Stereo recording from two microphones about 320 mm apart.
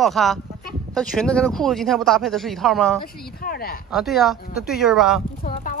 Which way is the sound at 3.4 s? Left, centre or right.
Left.